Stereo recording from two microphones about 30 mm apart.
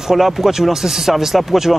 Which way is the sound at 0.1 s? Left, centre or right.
Centre.